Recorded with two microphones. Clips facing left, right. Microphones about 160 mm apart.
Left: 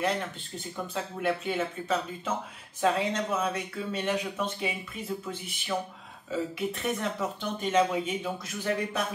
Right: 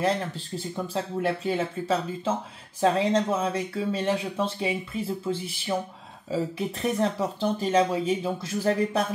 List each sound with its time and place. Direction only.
0.6 s speech: 35° right (ahead or behind)